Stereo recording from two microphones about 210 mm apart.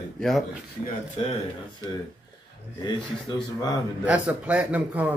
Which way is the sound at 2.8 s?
20° left (ahead or behind).